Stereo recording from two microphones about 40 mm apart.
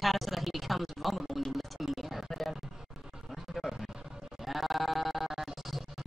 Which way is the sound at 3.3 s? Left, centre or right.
Centre.